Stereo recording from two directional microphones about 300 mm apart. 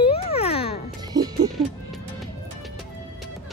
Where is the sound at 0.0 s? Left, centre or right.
Centre.